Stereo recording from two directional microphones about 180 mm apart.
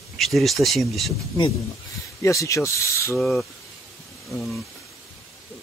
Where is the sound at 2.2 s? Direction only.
15° left (ahead or behind).